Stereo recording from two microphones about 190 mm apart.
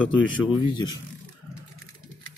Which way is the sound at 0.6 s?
25° left (ahead or behind).